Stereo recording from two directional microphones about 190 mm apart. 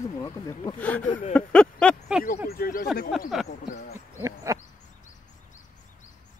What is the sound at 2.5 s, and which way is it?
Speech, 50° left (ahead or behind).